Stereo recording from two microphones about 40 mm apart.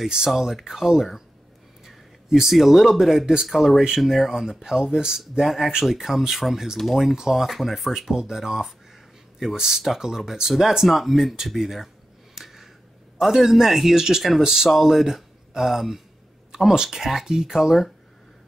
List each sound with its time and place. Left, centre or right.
0.4 s speech: centre
2.2 s speech: centre
2.5 s speech: centre
5.4 s speech: centre
12.4 s a sound: centre
13.2 s speech: centre